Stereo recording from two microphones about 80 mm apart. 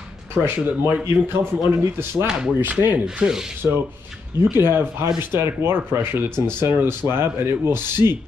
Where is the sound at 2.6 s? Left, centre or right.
Right.